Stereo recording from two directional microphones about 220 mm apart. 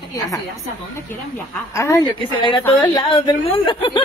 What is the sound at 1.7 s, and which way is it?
A woman's voice, 15° left (ahead or behind).